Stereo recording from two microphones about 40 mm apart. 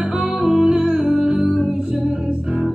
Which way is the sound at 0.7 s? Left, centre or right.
Right.